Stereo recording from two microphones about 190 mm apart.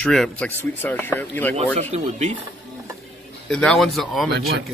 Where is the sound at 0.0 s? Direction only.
5° left (ahead or behind).